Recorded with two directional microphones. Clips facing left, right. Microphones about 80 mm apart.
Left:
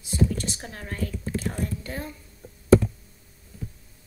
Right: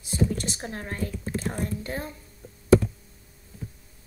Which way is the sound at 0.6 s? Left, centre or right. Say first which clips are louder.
Right 1 dB; right.